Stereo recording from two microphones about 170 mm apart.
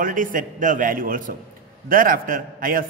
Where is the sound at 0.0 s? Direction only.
50° right (ahead or behind).